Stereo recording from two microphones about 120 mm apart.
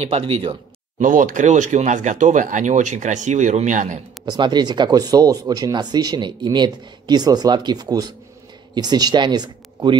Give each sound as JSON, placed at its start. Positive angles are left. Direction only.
{"t": 0.0, "sound": "speech", "side_deg": -55}
{"t": 0.9, "sound": "speech", "side_deg": -90}
{"t": 4.3, "sound": "speech", "side_deg": -35}